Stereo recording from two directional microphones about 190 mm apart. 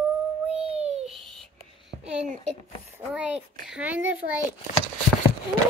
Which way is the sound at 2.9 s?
5° right (ahead or behind).